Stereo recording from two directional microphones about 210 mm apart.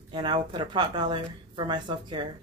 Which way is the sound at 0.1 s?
20° right (ahead or behind).